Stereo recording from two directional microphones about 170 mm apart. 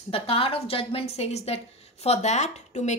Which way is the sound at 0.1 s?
35° left (ahead or behind).